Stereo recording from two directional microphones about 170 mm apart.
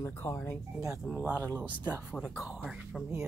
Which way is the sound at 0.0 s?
15° left (ahead or behind).